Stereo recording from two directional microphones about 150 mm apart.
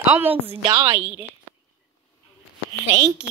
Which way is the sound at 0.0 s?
10° right (ahead or behind).